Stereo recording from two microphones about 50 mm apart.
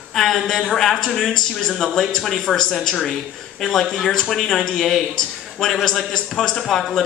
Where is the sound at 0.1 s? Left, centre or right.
Centre.